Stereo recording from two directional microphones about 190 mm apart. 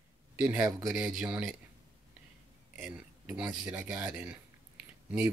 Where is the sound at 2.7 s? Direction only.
5° right (ahead or behind).